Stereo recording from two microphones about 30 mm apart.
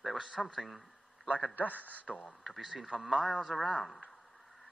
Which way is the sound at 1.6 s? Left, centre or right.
Left.